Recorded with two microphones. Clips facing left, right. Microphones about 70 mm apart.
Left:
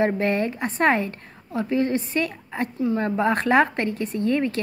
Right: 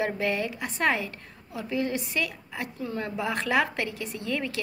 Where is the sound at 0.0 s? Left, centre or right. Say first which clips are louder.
Left 6 dB; left.